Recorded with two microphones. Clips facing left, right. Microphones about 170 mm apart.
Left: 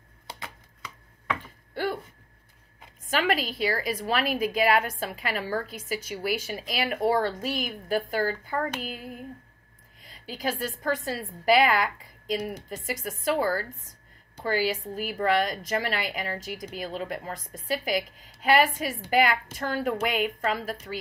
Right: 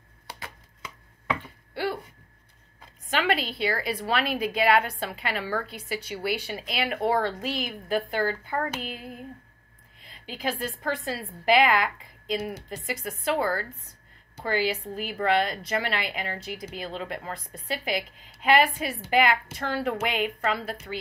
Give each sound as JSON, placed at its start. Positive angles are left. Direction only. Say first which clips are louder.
{"t": 1.4, "sound": "a sound", "louder": "even", "side_deg": 45}
{"t": 3.1, "sound": "a woman's voice", "louder": "even", "side_deg": 45}
{"t": 10.0, "sound": "a woman's voice", "louder": "even", "side_deg": 40}
{"t": 12.4, "sound": "a woman's voice", "louder": "right 2 dB", "side_deg": 15}
{"t": 12.6, "sound": "a woman's voice", "louder": "even", "side_deg": 45}